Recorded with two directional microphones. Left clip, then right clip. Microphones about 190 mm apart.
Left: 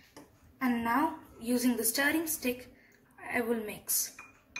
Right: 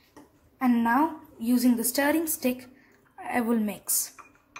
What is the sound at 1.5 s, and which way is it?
A woman's voice, 45° right (ahead or behind).